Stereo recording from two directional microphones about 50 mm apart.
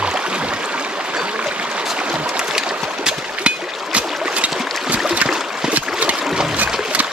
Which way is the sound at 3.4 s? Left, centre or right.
Right.